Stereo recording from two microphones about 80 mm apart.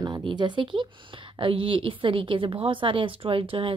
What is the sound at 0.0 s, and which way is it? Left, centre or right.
A woman's voice, right.